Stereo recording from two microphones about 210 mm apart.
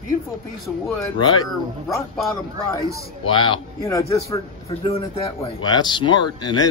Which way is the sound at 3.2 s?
25° left (ahead or behind).